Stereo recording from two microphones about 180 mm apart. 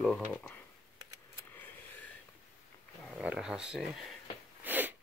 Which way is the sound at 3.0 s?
5° right (ahead or behind).